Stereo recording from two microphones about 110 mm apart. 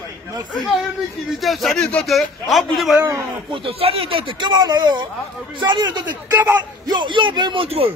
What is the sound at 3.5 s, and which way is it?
Speech, 60° right (ahead or behind).